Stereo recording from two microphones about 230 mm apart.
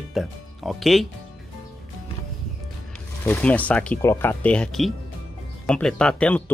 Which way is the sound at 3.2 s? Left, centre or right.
Centre.